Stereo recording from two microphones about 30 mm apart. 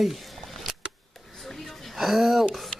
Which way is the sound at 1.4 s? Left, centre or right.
Centre.